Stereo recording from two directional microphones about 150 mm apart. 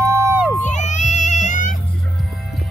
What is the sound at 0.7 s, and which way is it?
Music, 50° left (ahead or behind).